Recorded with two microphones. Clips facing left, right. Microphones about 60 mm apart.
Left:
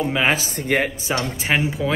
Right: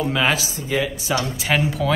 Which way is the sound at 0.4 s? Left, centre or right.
Left.